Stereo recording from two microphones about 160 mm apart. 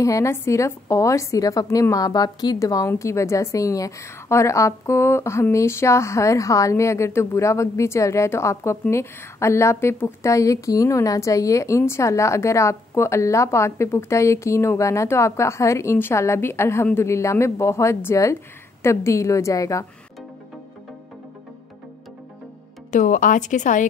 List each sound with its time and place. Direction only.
0.0 s a woman's voice: 20° left (ahead or behind)
22.8 s a woman's voice: 50° left (ahead or behind)